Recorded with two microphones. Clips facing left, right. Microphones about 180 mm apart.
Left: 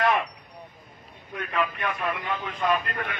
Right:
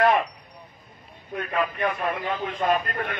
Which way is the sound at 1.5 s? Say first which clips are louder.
Right 3 dB; 40° right (ahead or behind).